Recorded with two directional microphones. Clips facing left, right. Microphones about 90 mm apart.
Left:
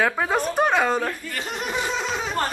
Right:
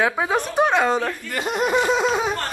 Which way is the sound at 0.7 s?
Centre (ahead or behind).